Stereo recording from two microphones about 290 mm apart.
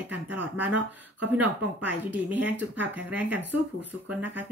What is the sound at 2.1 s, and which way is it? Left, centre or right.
Speech, centre.